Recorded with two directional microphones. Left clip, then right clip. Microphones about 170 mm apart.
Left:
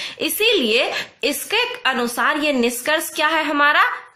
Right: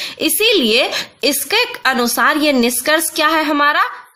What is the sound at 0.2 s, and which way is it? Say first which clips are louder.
A woman's voice: right 4 dB; 35° right (ahead or behind).